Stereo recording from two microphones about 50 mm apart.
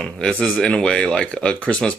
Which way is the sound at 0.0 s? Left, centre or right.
Centre.